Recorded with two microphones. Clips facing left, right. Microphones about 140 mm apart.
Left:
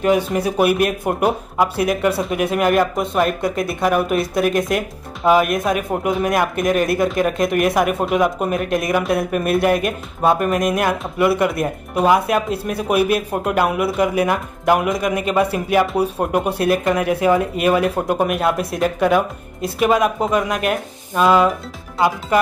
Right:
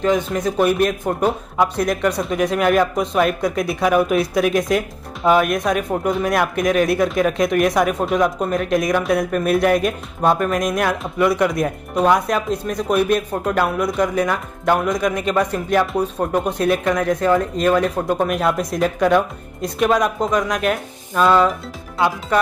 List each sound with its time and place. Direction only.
0.0 s speech: 10° left (ahead or behind)